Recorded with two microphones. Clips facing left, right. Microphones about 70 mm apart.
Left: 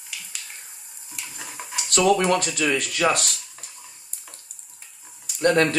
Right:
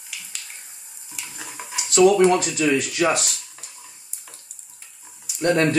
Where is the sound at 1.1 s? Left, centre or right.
Centre.